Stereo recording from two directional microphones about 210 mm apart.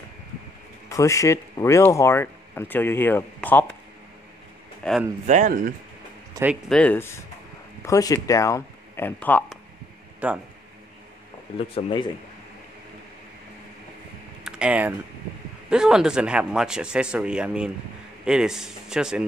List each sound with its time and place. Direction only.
0.8 s speech: 15° left (ahead or behind)
4.8 s speech: 5° left (ahead or behind)
5.2 s speech: 35° right (ahead or behind)
6.3 s speech: 10° right (ahead or behind)
6.7 s speech: 5° left (ahead or behind)
10.2 s speech: 5° right (ahead or behind)
11.5 s speech: 25° left (ahead or behind)
14.4 s typing: 5° right (ahead or behind)
15.7 s speech: 5° right (ahead or behind)